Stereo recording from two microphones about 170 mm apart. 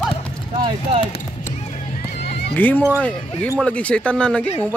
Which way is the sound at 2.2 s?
70° left (ahead or behind).